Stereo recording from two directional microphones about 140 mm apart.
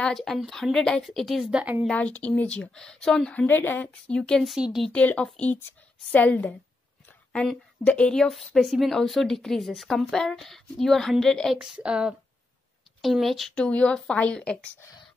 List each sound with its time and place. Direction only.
0.0 s speech: centre (ahead or behind)
1.9 s a woman's voice: 10° left (ahead or behind)
4.2 s a woman's voice: centre (ahead or behind)
14.8 s speech: 25° left (ahead or behind)